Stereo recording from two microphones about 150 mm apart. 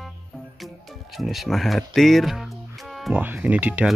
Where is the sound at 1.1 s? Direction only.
Centre (ahead or behind).